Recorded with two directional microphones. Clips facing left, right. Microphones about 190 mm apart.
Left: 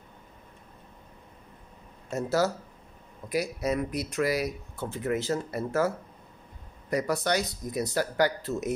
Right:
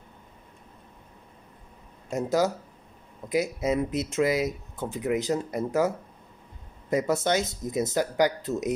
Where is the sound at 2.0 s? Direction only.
15° right (ahead or behind).